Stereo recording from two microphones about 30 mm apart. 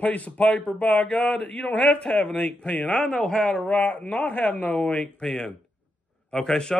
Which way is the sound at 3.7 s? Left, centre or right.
Left.